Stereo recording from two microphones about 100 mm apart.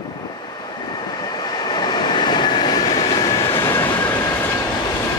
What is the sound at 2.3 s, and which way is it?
Vehicle, 55° left (ahead or behind).